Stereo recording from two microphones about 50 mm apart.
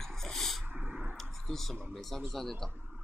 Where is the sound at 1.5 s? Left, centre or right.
Centre.